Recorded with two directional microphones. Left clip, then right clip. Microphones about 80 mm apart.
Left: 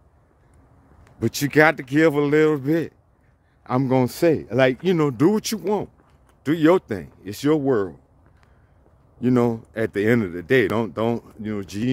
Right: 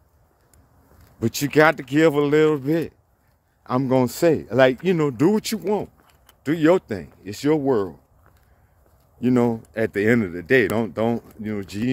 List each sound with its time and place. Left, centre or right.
1.2 s speech: left
9.2 s speech: left